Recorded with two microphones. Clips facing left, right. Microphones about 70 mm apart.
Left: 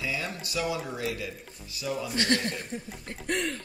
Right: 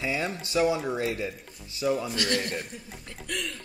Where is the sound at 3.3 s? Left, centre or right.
Left.